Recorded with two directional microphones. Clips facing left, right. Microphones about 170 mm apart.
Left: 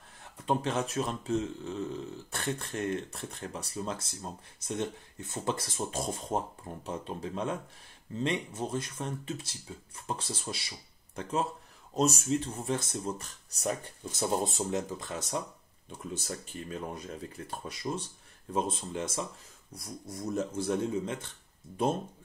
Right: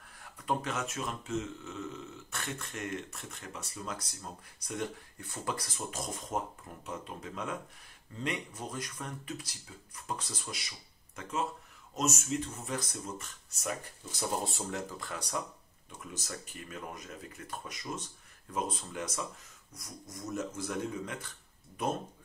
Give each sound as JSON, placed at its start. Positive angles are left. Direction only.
{"t": 0.2, "sound": "speech", "side_deg": 25}
{"t": 14.4, "sound": "speech", "side_deg": 20}